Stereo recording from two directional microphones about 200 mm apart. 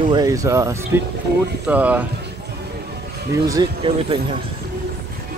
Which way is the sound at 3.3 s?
15° right (ahead or behind).